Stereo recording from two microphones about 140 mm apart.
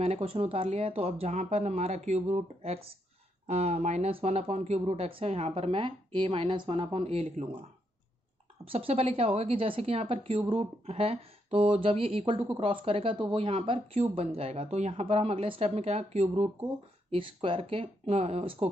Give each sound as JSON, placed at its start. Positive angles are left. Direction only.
{"t": 0.0, "sound": "speech", "side_deg": -45}
{"t": 8.6, "sound": "a woman's voice", "side_deg": -45}